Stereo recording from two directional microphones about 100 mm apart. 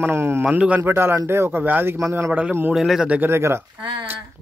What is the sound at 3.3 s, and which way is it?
Speech, 25° right (ahead or behind).